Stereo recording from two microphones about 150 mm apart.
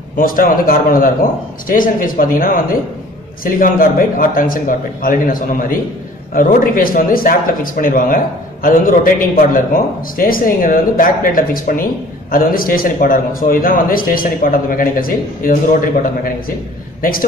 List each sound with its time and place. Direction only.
0.1 s a man's voice: 70° left (ahead or behind)